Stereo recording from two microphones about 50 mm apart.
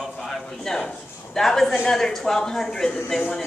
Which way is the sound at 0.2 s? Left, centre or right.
Centre.